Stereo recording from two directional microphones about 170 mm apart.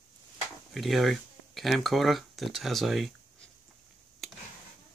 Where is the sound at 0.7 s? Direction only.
Centre (ahead or behind).